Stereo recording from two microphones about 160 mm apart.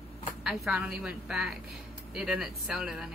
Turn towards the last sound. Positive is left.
turn(degrees=-5)  # may be behind; listen again after turning